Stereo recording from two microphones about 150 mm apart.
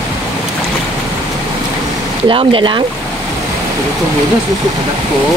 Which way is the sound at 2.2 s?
35° right (ahead or behind).